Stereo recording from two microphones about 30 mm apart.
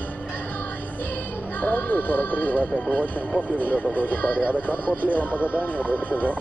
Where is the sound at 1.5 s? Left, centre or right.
Left.